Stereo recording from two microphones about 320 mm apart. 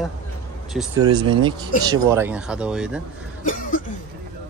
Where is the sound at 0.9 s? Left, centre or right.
Centre.